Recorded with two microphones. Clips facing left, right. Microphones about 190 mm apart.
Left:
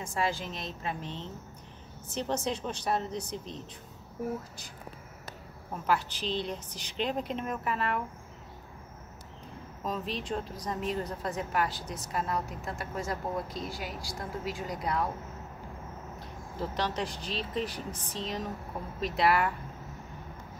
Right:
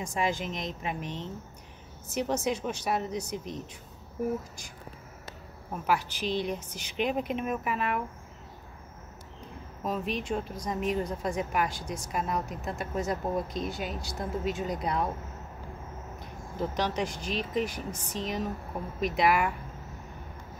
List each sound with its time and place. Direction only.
0.0 s a woman's voice: 15° right (ahead or behind)
5.7 s a woman's voice: 15° right (ahead or behind)
9.8 s a woman's voice: 10° right (ahead or behind)
16.5 s a woman's voice: 15° right (ahead or behind)